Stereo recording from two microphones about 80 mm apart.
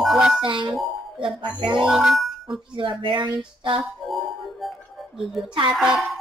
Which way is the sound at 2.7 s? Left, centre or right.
Right.